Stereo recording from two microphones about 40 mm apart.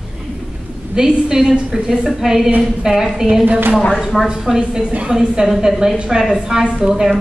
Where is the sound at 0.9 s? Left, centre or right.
Centre.